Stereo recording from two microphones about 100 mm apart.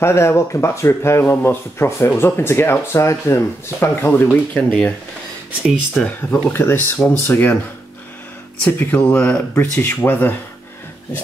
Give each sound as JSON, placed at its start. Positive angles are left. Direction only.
{"t": 0.0, "sound": "speech", "side_deg": 25}
{"t": 5.9, "sound": "speech", "side_deg": 10}
{"t": 6.5, "sound": "speech", "side_deg": 20}
{"t": 8.6, "sound": "speech", "side_deg": 15}